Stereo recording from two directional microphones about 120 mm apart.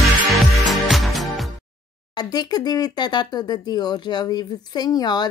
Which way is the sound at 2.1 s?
35° left (ahead or behind).